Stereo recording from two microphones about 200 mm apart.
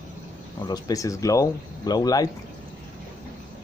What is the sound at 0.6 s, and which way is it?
Speech, 20° left (ahead or behind).